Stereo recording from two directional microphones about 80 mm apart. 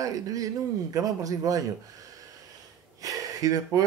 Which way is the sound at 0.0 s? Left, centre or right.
Right.